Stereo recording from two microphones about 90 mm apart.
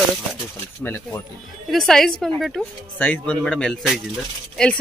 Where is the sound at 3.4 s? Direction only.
5° left (ahead or behind).